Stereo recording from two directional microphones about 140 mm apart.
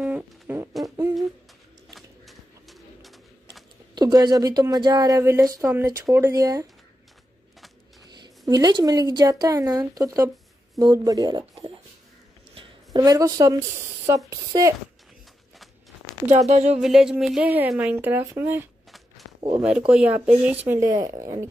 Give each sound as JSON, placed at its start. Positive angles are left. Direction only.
{"t": 0.0, "sound": "a sound", "side_deg": -10}
{"t": 2.0, "sound": "bird", "side_deg": 0}
{"t": 3.9, "sound": "speech", "side_deg": -30}
{"t": 8.2, "sound": "speech", "side_deg": -30}
{"t": 16.3, "sound": "speech", "side_deg": -50}
{"t": 16.8, "sound": "a sound", "side_deg": -5}
{"t": 17.5, "sound": "speech", "side_deg": -10}
{"t": 18.9, "sound": "a sound", "side_deg": 0}
{"t": 19.9, "sound": "speech", "side_deg": -10}